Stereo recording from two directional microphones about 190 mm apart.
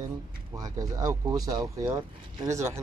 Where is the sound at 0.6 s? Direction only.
20° right (ahead or behind).